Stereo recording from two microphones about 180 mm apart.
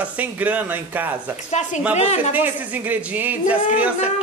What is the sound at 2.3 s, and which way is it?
A man's voice, 10° right (ahead or behind).